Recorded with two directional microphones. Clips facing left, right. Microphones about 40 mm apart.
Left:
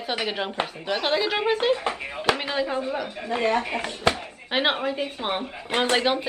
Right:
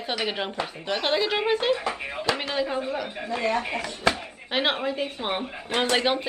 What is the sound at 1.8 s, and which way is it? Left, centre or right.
Speech, left.